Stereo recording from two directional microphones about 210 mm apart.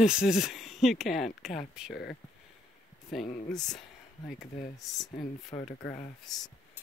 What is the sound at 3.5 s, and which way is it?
Speech, centre (ahead or behind).